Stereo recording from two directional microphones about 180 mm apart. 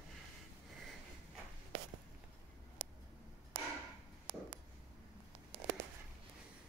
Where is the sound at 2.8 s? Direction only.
35° right (ahead or behind).